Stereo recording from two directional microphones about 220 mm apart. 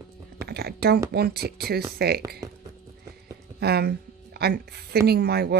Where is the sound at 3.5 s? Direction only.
45° right (ahead or behind).